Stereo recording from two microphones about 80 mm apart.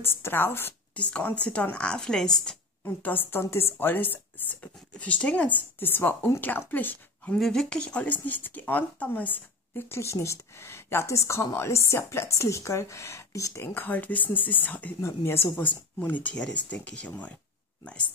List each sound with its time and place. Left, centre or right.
0.0 s speech: left
0.9 s speech: centre
2.8 s speech: left
7.3 s speech: centre; by 13.7 s left
13.7 s speech: left
15.0 s speech: left; by 17.1 s centre